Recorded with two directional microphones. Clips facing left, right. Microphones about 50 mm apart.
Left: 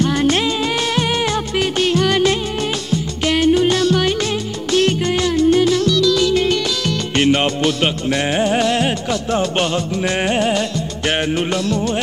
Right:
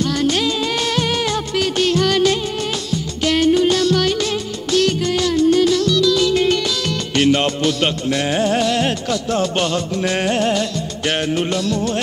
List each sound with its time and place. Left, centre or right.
0.0 s music: left
7.2 s music: centre